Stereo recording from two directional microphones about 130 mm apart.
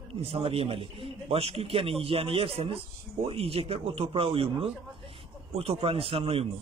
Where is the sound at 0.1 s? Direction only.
50° right (ahead or behind).